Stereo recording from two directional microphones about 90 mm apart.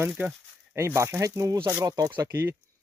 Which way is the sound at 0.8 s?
30° right (ahead or behind).